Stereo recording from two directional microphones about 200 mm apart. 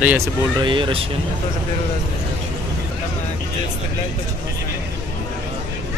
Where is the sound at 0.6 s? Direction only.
25° right (ahead or behind).